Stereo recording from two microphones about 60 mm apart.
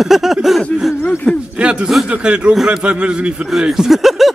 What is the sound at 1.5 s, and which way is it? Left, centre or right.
A man's voice, centre.